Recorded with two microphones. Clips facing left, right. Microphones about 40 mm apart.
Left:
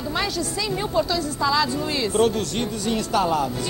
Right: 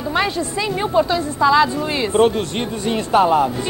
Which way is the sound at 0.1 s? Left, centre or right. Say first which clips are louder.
Right 6 dB; right.